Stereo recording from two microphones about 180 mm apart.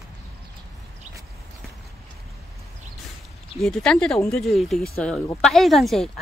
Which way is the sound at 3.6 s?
5° left (ahead or behind).